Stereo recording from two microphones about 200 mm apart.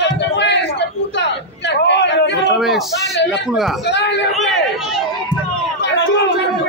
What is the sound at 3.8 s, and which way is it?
Speech, 60° left (ahead or behind).